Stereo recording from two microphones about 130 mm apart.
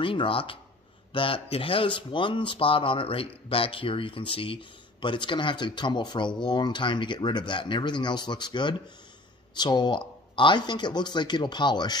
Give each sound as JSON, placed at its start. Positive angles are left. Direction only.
{"t": 0.0, "sound": "speech", "side_deg": 40}